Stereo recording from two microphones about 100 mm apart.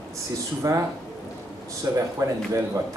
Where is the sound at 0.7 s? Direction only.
35° right (ahead or behind).